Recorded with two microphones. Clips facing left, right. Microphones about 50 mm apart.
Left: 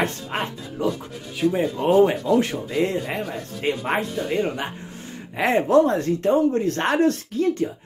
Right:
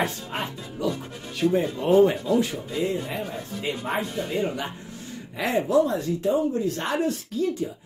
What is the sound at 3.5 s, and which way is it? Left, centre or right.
Speech, left.